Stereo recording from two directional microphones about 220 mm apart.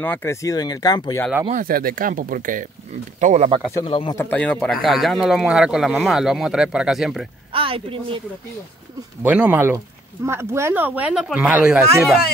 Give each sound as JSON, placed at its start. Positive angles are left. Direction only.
{"t": 0.0, "sound": "speech", "side_deg": 10}
{"t": 1.5, "sound": "speech", "side_deg": -40}
{"t": 3.7, "sound": "speech", "side_deg": 25}
{"t": 4.2, "sound": "speech", "side_deg": 5}
{"t": 7.5, "sound": "speech", "side_deg": -25}
{"t": 9.2, "sound": "speech", "side_deg": -5}